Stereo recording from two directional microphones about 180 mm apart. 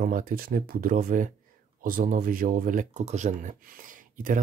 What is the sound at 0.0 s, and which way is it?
Speech, 50° right (ahead or behind).